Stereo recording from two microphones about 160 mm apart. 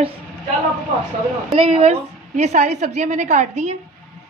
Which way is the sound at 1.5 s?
40° right (ahead or behind).